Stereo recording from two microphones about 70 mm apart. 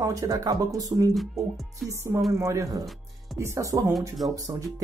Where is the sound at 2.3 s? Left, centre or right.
Right.